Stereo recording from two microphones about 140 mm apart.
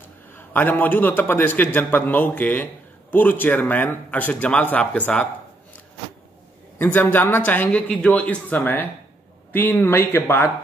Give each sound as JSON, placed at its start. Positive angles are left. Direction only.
{"t": 0.3, "sound": "a man's voice", "side_deg": 15}
{"t": 6.8, "sound": "a man's voice", "side_deg": 15}